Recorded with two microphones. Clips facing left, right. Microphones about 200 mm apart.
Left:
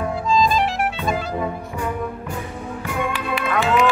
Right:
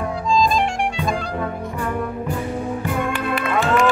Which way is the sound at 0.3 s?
Centre (ahead or behind).